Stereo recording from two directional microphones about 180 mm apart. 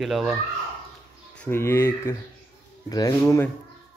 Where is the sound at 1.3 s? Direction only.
10° left (ahead or behind).